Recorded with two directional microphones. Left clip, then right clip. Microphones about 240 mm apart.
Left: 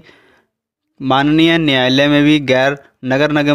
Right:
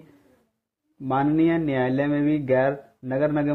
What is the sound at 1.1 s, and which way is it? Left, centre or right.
Speech, left.